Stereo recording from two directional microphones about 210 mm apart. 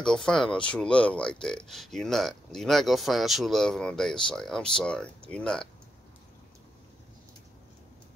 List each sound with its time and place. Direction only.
0.0 s speech: 5° left (ahead or behind)